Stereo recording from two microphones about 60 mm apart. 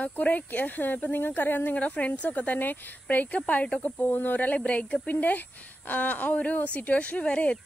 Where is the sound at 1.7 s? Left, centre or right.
Left.